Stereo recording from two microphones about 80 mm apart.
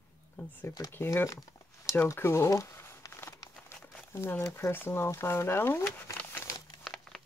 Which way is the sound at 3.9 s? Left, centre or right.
Left.